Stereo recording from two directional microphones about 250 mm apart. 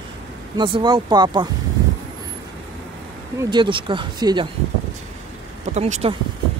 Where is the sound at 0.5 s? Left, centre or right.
Centre.